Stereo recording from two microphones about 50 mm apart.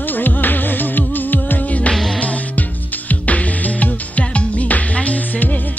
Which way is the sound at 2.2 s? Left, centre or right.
Left.